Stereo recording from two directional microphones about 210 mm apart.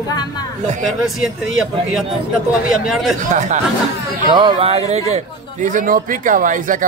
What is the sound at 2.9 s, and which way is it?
Speech, centre (ahead or behind).